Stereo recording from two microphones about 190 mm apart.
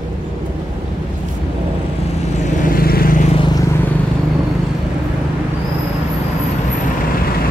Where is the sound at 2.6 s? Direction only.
50° left (ahead or behind).